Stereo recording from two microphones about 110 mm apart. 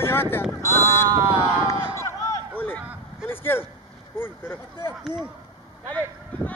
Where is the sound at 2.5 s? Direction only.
15° left (ahead or behind).